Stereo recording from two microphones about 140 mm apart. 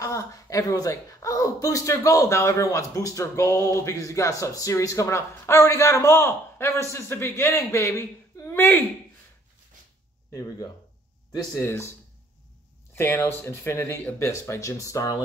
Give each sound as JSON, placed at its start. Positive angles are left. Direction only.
{"t": 0.0, "sound": "speech", "side_deg": 25}
{"t": 11.3, "sound": "speech", "side_deg": 20}
{"t": 12.9, "sound": "speech", "side_deg": 15}